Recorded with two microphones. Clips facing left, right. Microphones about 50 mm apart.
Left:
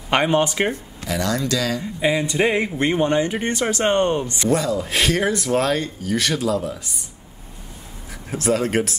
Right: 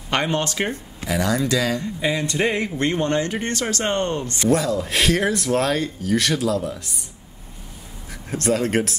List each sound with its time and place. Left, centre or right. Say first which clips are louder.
0.1 s speech: left 4 dB; centre
1.0 s speech: right 1 dB; centre
1.8 s speech: left 2 dB; centre
4.4 s speech: right 4 dB; centre
8.3 s speech: even; centre